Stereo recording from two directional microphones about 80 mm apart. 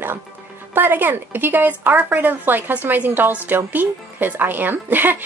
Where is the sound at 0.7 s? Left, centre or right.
Right.